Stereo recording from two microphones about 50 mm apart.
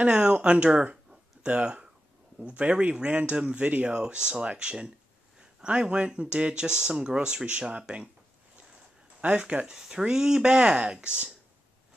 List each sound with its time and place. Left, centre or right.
0.0 s speech: right
9.2 s speech: right
9.7 s speech: centre